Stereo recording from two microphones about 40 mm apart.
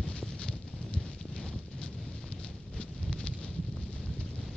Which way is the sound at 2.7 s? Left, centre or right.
Left.